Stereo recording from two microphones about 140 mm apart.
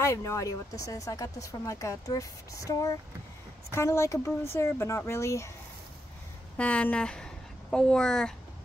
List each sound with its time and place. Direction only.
0.0 s speech: 20° left (ahead or behind)
6.5 s speech: 10° left (ahead or behind)